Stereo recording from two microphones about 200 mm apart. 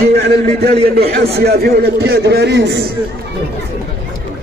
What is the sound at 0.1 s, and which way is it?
A man's voice, 55° right (ahead or behind).